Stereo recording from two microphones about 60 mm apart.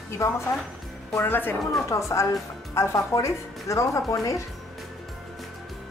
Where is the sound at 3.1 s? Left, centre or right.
Left.